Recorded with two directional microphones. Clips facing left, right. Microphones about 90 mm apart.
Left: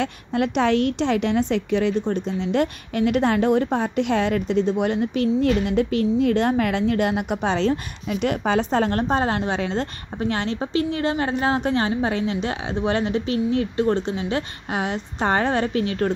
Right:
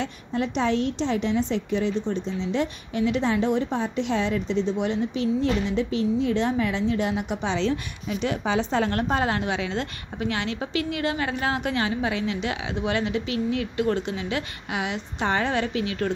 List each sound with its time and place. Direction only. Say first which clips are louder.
0.0 s a woman's voice: left 4 dB; 65° left (ahead or behind); by 16.1 s 40° left (ahead or behind)